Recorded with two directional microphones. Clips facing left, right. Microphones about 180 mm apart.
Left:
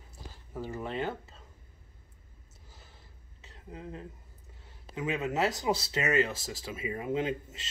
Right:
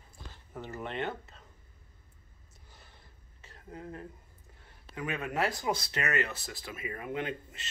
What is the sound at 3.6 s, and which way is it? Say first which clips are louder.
Speech: even; 20° left (ahead or behind).